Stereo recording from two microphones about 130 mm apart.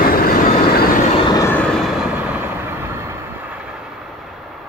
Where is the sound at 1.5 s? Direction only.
5° left (ahead or behind).